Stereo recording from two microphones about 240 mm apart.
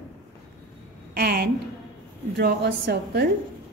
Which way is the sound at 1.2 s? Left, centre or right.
Right.